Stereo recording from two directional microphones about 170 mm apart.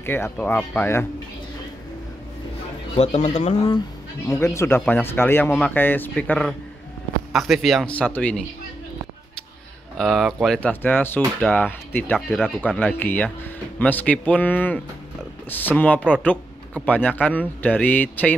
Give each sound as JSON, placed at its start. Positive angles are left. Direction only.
{"t": 0.0, "sound": "speech", "side_deg": 10}
{"t": 3.0, "sound": "speech", "side_deg": 40}
{"t": 4.3, "sound": "speech", "side_deg": 15}
{"t": 9.9, "sound": "speech", "side_deg": 0}